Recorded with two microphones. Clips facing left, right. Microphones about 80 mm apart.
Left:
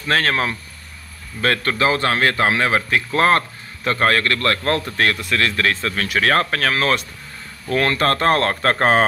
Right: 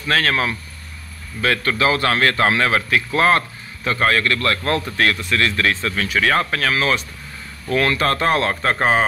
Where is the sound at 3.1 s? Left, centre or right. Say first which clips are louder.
Left 1 dB; left.